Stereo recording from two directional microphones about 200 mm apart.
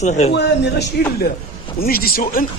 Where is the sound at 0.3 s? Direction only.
55° left (ahead or behind).